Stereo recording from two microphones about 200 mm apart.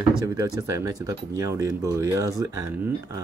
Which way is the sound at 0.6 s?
15° right (ahead or behind).